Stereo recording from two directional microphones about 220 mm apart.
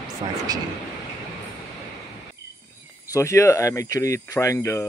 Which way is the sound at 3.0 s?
15° left (ahead or behind).